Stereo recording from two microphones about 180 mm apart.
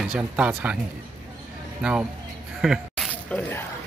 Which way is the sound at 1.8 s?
5° right (ahead or behind).